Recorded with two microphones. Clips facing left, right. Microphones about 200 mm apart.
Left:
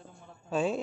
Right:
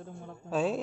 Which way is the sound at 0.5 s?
5° right (ahead or behind).